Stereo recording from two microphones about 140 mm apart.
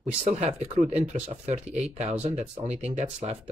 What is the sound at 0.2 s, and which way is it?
Speech, 55° right (ahead or behind).